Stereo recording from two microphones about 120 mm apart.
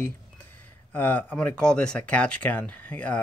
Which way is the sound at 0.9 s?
15° left (ahead or behind).